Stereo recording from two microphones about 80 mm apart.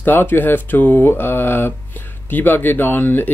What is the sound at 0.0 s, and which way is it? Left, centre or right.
Speech, left.